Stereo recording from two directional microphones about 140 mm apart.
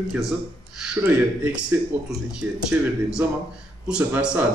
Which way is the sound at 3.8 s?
5° right (ahead or behind).